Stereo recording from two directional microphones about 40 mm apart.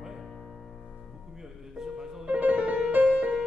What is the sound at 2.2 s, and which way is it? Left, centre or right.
Music, right.